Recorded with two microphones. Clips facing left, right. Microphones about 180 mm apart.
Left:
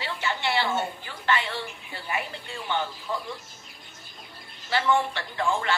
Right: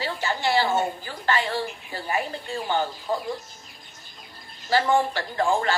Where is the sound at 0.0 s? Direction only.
35° right (ahead or behind).